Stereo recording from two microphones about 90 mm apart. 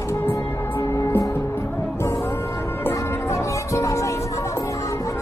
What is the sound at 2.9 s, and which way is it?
Music, 30° left (ahead or behind).